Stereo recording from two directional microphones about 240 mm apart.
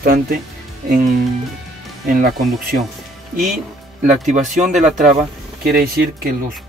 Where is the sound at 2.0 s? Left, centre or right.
Right.